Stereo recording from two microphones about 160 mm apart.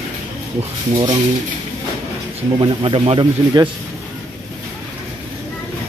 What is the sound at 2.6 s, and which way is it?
Speech, 30° right (ahead or behind).